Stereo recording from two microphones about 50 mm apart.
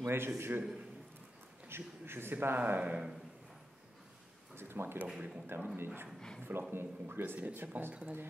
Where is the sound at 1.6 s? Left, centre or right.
Right.